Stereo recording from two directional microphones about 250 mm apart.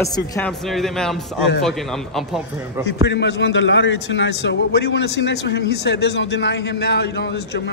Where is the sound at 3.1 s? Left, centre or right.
Left.